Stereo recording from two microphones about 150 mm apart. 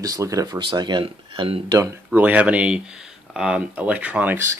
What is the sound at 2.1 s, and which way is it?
Speech, 10° right (ahead or behind).